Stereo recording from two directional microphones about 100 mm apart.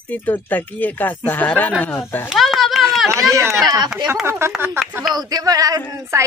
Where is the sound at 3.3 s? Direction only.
30° right (ahead or behind).